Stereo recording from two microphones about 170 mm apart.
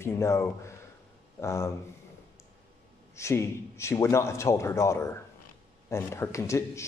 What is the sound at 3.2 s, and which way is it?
Speech, 15° left (ahead or behind).